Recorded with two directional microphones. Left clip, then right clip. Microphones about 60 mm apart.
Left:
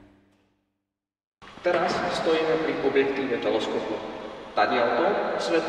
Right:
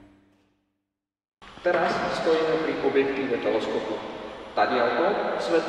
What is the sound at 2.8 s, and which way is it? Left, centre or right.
A man's voice, left.